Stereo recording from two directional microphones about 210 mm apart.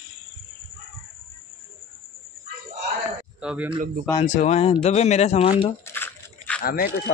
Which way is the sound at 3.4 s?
5° right (ahead or behind).